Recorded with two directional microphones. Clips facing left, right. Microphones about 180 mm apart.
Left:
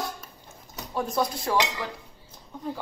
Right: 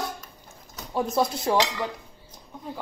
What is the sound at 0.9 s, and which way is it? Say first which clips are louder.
Speech: right 3 dB; 25° right (ahead or behind).